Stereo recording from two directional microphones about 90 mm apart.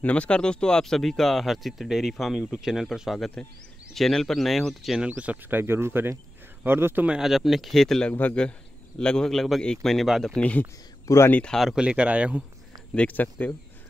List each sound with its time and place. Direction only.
0.0 s speech: 15° left (ahead or behind); by 7.1 s 25° right (ahead or behind)
7.1 s speech: 5° right (ahead or behind)
8.1 s a man's voice: 20° left (ahead or behind); by 10.3 s centre (ahead or behind)
10.3 s a man's voice: 15° left (ahead or behind)
11.1 s speech: 35° left (ahead or behind)
11.4 s speech: 5° left (ahead or behind)
11.7 s speech: 10° right (ahead or behind)
12.9 s speech: 15° left (ahead or behind)